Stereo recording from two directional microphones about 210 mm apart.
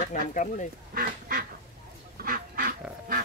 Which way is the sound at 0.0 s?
35° left (ahead or behind).